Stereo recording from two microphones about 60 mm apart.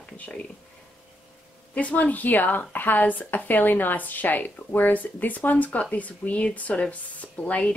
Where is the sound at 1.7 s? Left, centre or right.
Left.